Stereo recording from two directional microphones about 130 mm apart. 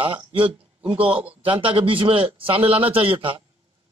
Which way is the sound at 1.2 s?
10° right (ahead or behind).